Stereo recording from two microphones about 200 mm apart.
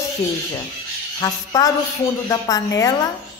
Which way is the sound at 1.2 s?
15° left (ahead or behind).